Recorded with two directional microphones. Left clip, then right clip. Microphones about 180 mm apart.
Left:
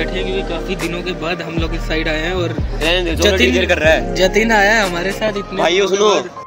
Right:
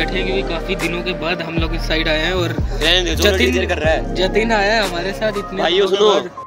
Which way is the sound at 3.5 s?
60° left (ahead or behind).